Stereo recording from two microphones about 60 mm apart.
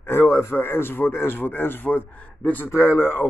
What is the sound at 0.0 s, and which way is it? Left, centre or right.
A man's voice, left.